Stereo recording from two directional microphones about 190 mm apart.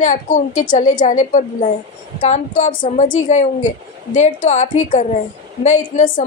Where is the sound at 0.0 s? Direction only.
40° left (ahead or behind).